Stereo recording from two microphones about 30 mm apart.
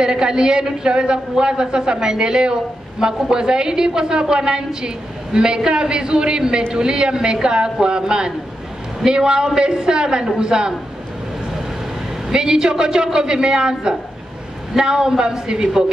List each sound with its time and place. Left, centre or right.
0.0 s a man's voice: right
12.3 s a man's voice: right